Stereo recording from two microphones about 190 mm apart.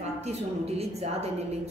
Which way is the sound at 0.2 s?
35° right (ahead or behind).